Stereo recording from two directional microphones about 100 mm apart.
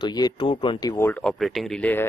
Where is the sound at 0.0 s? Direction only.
45° left (ahead or behind).